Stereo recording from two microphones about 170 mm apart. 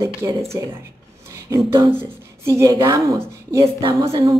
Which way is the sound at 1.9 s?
15° right (ahead or behind).